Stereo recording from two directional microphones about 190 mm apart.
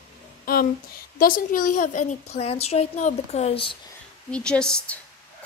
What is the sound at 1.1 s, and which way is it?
A woman's voice, 50° left (ahead or behind).